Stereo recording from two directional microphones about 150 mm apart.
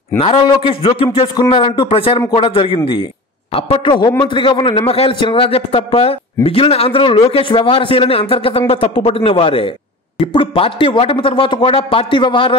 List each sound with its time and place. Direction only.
0.2 s a man's voice: 40° left (ahead or behind)